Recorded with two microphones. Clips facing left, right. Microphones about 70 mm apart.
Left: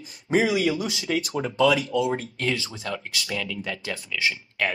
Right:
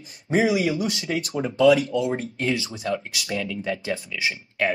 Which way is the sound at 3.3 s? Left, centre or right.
Right.